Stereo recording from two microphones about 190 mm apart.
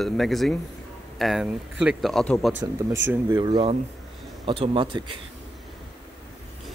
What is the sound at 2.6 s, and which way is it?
Speech, 15° right (ahead or behind).